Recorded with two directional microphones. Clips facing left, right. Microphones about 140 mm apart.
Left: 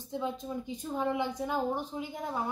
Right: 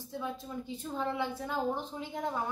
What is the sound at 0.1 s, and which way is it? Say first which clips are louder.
A woman's voice: left 4 dB; 20° left (ahead or behind).